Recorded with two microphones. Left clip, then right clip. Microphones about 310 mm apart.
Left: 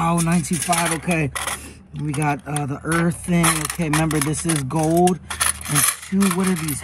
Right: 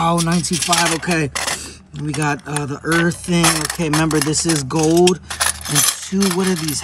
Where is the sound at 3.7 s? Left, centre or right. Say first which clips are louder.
Right 4 dB; right.